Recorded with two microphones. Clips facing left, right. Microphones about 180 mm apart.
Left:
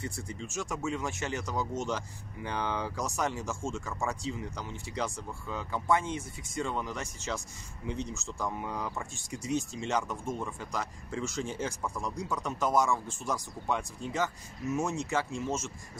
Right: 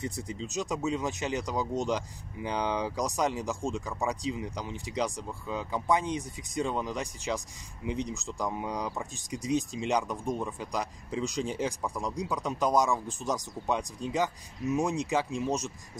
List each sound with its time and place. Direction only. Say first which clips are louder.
0.0 s speech: right 3 dB; 20° right (ahead or behind)